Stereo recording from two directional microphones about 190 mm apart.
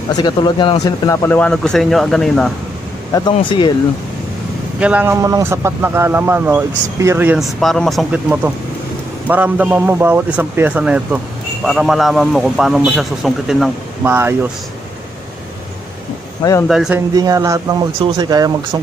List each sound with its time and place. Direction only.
0.1 s a man's voice: 20° left (ahead or behind); by 2.5 s centre (ahead or behind)
3.1 s speech: 25° left (ahead or behind)
4.7 s a man's voice: 5° right (ahead or behind)
7.6 s a man's voice: centre (ahead or behind)
16.6 s a man's voice: 5° right (ahead or behind)
17.1 s a man's voice: 20° right (ahead or behind)